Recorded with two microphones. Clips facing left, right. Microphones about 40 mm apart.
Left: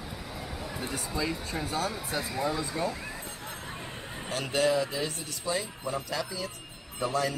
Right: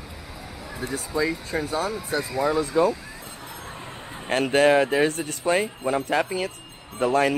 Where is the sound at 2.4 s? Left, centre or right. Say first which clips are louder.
Right 9 dB; right.